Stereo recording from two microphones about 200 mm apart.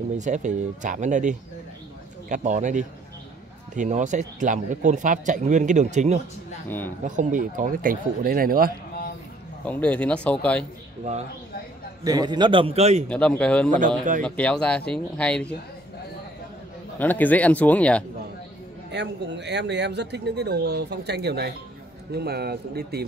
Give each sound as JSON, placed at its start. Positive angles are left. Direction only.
{"t": 0.2, "sound": "a man's voice", "side_deg": -35}
{"t": 9.7, "sound": "speech", "side_deg": 5}
{"t": 12.0, "sound": "a man's voice", "side_deg": -20}
{"t": 13.1, "sound": "speech", "side_deg": 5}
{"t": 13.7, "sound": "a man's voice", "side_deg": -40}
{"t": 14.2, "sound": "speech", "side_deg": 5}
{"t": 17.0, "sound": "speech", "side_deg": 10}
{"t": 18.9, "sound": "speech", "side_deg": -60}